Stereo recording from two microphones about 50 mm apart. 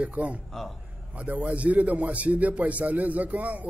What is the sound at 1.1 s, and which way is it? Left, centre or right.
A man's voice, right.